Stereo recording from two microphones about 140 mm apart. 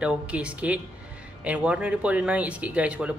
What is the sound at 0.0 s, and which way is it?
A man's voice, 5° right (ahead or behind).